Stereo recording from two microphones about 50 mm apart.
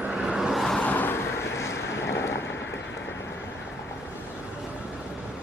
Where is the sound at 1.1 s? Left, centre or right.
Left.